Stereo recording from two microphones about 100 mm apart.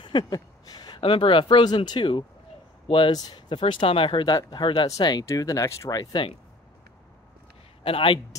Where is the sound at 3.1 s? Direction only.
45° left (ahead or behind).